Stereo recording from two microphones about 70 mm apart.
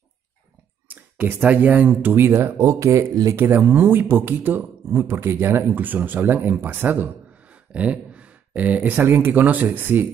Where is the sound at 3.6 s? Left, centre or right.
Right.